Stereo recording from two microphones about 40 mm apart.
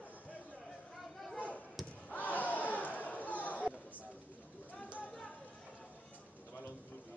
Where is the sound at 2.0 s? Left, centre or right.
Left.